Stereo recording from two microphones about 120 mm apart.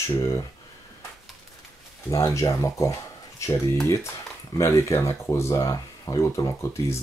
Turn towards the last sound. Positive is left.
turn(degrees=25)  # may be behind; listen again after turning